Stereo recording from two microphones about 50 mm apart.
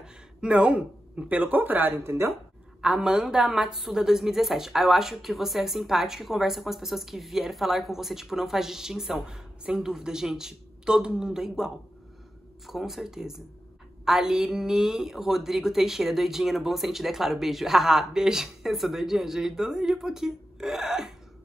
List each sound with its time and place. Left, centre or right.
0.0 s speech: centre; by 2.0 s right
2.0 s speech: right
2.8 s a woman's voice: centre